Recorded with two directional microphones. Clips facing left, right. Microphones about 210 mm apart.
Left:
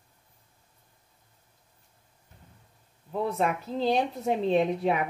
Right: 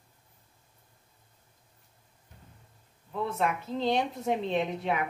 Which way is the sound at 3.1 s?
40° left (ahead or behind).